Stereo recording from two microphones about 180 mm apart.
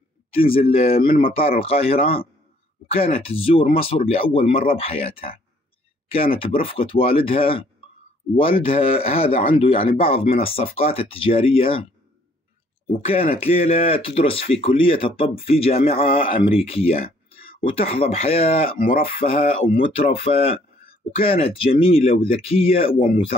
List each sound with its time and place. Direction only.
0.6 s speech: 30° left (ahead or behind)
0.9 s speech: 50° left (ahead or behind)
1.6 s speech: 30° left (ahead or behind)
17.0 s a sound: 55° left (ahead or behind)
17.6 s speech: 30° left (ahead or behind)
18.8 s speech: 50° left (ahead or behind)
19.0 s speech: 30° left (ahead or behind)
22.9 s speech: 50° left (ahead or behind)